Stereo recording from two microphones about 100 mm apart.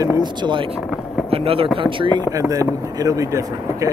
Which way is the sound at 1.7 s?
60° right (ahead or behind).